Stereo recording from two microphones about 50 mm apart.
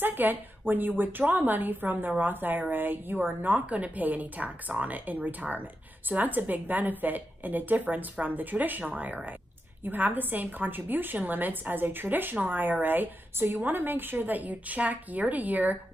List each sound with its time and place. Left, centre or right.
0.0 s a woman's voice: right